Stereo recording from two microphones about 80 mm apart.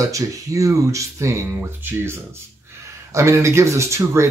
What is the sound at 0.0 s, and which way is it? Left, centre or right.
Speech, right.